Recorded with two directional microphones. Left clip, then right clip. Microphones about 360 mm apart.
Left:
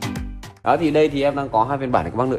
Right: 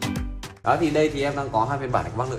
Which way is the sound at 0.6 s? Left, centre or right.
Centre.